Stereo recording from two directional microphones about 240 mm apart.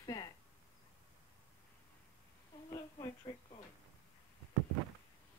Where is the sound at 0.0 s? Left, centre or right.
Centre.